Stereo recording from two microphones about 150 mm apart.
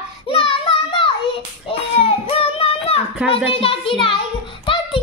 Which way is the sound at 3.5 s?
40° left (ahead or behind).